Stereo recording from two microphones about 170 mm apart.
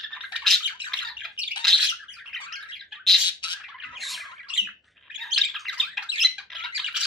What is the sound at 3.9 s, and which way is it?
Squawk, centre (ahead or behind).